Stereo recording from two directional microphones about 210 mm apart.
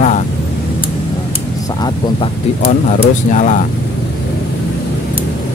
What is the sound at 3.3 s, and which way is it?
Speech, 35° left (ahead or behind).